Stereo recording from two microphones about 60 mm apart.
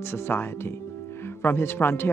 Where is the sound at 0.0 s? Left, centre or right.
Left.